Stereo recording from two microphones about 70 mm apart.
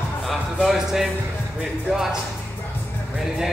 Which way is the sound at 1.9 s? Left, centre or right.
Centre.